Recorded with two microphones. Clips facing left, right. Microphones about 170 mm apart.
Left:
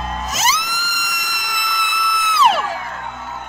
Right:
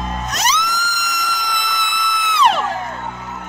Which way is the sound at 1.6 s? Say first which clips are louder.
Right 1 dB; centre (ahead or behind).